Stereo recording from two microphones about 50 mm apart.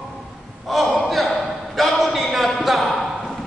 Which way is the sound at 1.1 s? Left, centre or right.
Centre.